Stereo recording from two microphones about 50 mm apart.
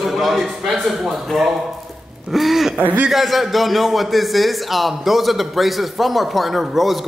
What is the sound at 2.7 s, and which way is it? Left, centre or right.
Speech, right.